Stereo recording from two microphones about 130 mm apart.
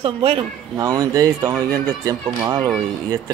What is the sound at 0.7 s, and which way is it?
Speech, 30° right (ahead or behind).